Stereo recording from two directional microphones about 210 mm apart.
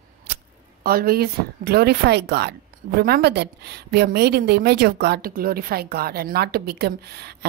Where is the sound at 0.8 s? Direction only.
45° right (ahead or behind).